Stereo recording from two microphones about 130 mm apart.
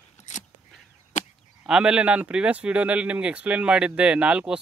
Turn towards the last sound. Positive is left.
turn(degrees=-10)  # may be behind; listen again after turning